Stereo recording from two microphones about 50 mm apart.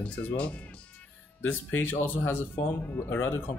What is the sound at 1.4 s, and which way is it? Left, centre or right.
Speech, left.